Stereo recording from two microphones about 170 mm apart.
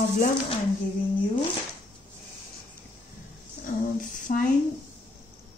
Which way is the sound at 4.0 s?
50° left (ahead or behind).